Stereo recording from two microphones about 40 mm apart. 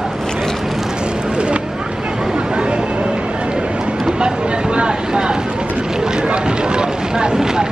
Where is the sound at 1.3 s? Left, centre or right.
Right.